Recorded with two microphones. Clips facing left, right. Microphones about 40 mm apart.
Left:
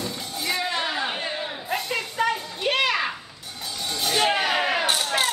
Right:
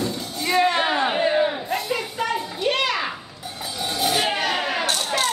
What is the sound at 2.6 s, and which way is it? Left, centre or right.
Children playing, centre.